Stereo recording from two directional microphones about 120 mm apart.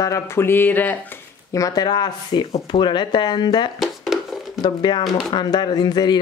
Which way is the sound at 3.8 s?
Centre (ahead or behind).